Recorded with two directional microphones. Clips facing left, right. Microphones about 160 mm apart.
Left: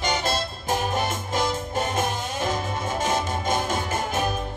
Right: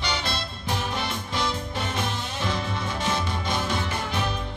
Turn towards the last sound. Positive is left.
turn(degrees=45)  # may be behind; listen again after turning